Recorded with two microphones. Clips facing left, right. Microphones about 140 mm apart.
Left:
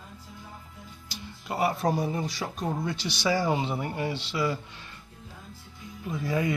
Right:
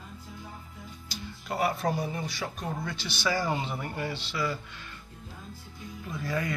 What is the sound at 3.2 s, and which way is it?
Speech, 20° left (ahead or behind).